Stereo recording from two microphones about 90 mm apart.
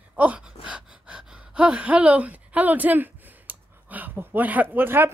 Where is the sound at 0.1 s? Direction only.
15° right (ahead or behind).